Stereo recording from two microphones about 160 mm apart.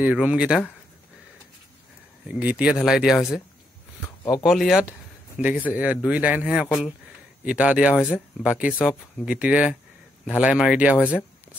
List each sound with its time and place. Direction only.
0.0 s speech: 10° right (ahead or behind)
2.2 s speech: 5° right (ahead or behind)
4.0 s a sound: 20° left (ahead or behind)
4.4 s speech: centre (ahead or behind)